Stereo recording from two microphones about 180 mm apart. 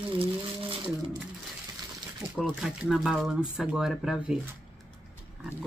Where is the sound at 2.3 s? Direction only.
Centre (ahead or behind).